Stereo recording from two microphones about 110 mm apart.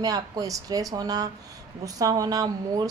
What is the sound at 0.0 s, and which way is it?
Speech, 35° right (ahead or behind).